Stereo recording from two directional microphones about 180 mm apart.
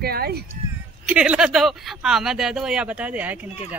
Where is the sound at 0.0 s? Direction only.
60° right (ahead or behind).